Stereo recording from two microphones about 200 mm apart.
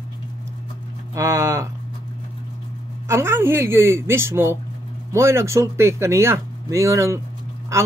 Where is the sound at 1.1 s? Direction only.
15° right (ahead or behind).